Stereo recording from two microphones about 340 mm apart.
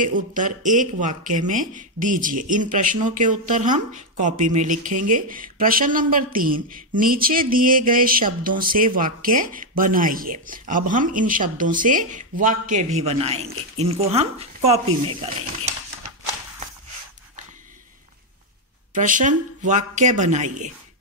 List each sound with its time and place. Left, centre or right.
0.0 s speech: right
18.9 s speech: right